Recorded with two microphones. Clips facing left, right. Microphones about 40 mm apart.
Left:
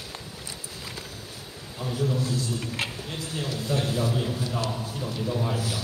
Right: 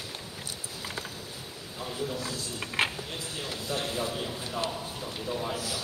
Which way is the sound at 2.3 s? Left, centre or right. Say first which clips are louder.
Left 5 dB; right.